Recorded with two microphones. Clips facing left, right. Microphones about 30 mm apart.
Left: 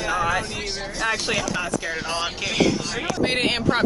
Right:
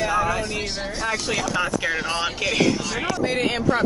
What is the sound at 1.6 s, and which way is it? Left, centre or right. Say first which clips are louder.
Speech: right 3 dB; right.